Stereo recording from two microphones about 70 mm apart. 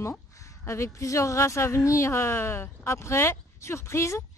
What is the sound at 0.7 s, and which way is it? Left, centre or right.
A woman's voice, left.